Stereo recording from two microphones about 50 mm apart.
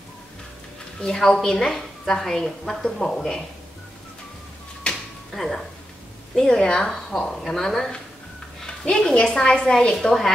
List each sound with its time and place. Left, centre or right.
1.0 s a woman's voice: centre
4.9 s a sound: left
5.3 s a woman's voice: centre